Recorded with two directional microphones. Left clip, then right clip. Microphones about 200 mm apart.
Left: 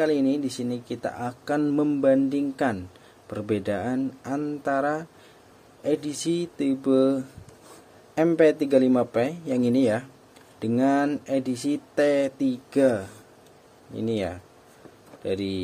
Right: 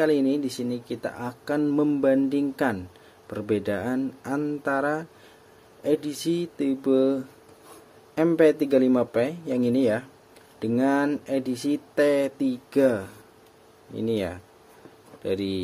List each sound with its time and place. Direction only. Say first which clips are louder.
0.0 s speech: right 1 dB; centre (ahead or behind)